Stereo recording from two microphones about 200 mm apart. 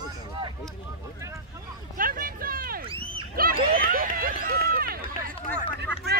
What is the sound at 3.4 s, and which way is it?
Run, 45° right (ahead or behind).